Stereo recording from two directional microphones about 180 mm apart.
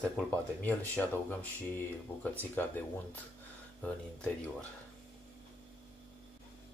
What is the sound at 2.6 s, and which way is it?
Speech, 10° left (ahead or behind).